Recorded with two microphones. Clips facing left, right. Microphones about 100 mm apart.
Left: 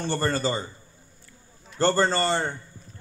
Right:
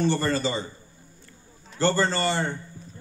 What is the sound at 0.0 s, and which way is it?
Speech, 45° left (ahead or behind).